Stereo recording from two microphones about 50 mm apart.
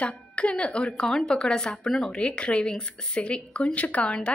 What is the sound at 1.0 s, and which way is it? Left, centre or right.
Speech, centre.